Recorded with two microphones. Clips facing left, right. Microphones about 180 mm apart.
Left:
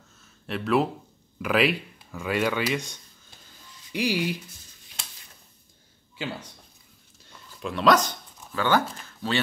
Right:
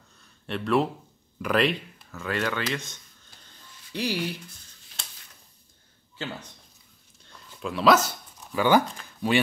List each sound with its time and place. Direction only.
0.2 s a sound: centre (ahead or behind)
1.4 s speech: 5° left (ahead or behind)
6.1 s speech: 10° left (ahead or behind)
7.2 s dog: centre (ahead or behind)
9.2 s speech: 15° right (ahead or behind)